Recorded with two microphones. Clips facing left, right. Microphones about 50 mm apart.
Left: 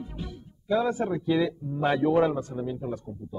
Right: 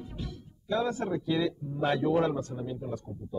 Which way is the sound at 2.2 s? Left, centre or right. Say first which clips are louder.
Left 4 dB; centre.